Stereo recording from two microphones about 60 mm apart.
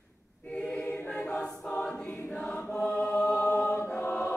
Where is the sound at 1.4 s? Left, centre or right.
Centre.